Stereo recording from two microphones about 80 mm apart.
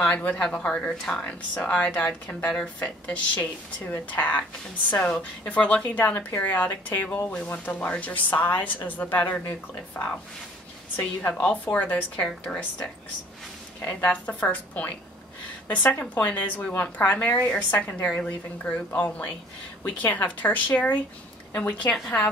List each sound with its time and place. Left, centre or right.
0.1 s a woman's voice: centre
13.7 s a woman's voice: centre